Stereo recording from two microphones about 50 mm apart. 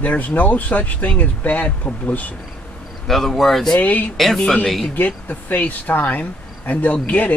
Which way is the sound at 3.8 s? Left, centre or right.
Left.